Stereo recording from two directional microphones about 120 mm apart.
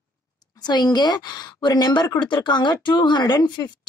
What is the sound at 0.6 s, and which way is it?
Speech, 35° left (ahead or behind).